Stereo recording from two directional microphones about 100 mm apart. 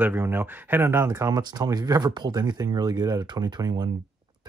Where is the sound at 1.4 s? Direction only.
40° right (ahead or behind).